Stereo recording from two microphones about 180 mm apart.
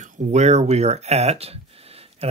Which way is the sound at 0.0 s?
40° right (ahead or behind).